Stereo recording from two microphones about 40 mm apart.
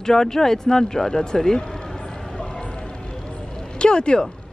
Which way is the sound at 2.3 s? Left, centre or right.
Left.